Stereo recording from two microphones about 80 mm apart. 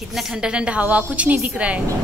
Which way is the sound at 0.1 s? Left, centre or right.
Centre.